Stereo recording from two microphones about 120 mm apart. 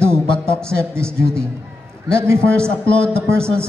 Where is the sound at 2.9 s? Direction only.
10° left (ahead or behind).